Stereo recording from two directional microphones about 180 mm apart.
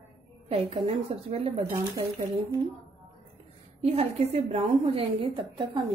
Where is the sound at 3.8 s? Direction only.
35° right (ahead or behind).